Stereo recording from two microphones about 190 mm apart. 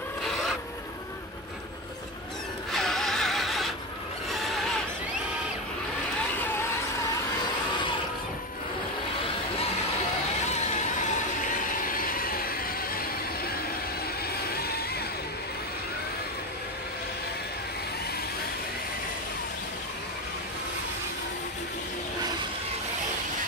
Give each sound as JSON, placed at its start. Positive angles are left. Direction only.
{"t": 0.2, "sound": "filing", "side_deg": 0}
{"t": 2.7, "sound": "a sound", "side_deg": 0}
{"t": 10.5, "sound": "vehicle", "side_deg": 35}
{"t": 14.3, "sound": "music", "side_deg": 55}